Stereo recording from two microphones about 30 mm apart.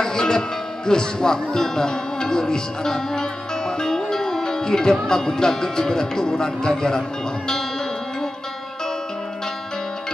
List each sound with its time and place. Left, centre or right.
0.0 s speech: left
3.8 s music: centre
5.0 s speech: left